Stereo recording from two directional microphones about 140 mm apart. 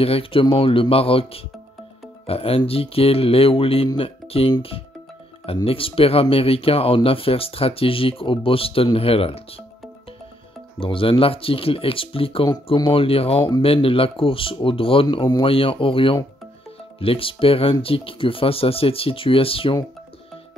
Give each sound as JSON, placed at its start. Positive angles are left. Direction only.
{"t": 0.0, "sound": "speech", "side_deg": 40}
{"t": 10.8, "sound": "speech", "side_deg": 40}